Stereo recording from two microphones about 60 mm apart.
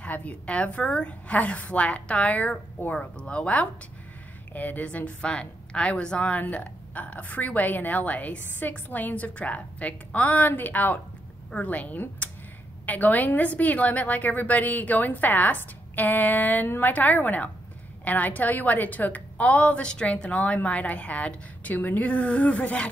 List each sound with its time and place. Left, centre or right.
0.0 s a woman's voice: left